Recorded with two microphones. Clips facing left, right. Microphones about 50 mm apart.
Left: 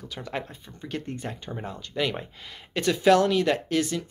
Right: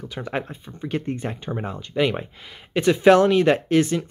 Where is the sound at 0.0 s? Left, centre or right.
Right.